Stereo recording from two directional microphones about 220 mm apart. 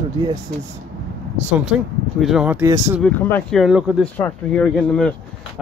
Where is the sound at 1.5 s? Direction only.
5° right (ahead or behind).